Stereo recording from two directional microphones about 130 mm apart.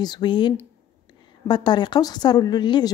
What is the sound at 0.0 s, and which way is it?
A woman's voice, 35° left (ahead or behind).